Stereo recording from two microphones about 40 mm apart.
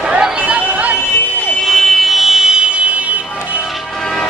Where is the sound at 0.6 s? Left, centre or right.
Right.